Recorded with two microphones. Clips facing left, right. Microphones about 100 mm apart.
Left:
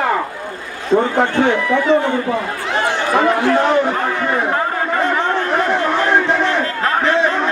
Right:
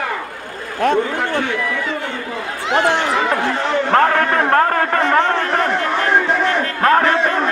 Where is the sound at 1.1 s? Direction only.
30° left (ahead or behind).